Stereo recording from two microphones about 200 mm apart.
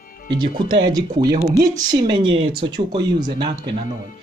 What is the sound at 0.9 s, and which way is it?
Speech, 20° right (ahead or behind).